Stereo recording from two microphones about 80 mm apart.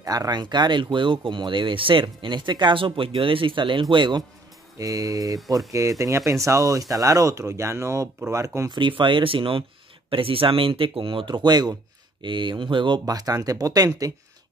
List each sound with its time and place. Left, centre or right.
0.0 s speech: right
4.7 s speech: right
8.6 s speech: right
12.2 s speech: right
13.0 s speech: right